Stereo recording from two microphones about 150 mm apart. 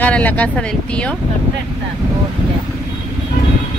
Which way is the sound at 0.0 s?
10° left (ahead or behind).